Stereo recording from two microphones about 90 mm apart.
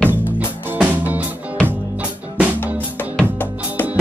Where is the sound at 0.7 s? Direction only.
15° right (ahead or behind).